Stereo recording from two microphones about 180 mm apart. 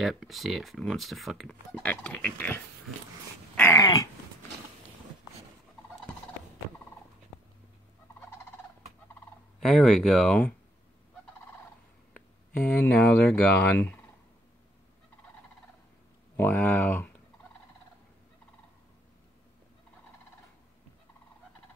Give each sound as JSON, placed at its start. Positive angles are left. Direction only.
{"t": 0.0, "sound": "speech", "side_deg": 0}
{"t": 9.6, "sound": "speech", "side_deg": 5}
{"t": 12.1, "sound": "speech", "side_deg": 10}
{"t": 16.3, "sound": "speech", "side_deg": 10}